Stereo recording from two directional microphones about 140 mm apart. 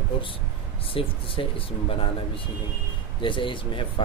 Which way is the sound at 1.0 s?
40° left (ahead or behind).